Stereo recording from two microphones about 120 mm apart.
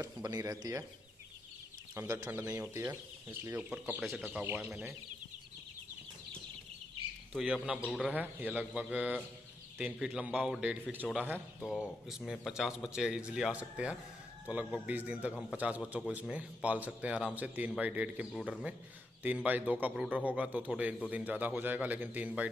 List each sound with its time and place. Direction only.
0.0 s speech: 30° right (ahead or behind)
2.0 s speech: 25° right (ahead or behind)
7.3 s speech: centre (ahead or behind)
8.0 s speech: 15° right (ahead or behind)
11.6 s speech: 5° right (ahead or behind)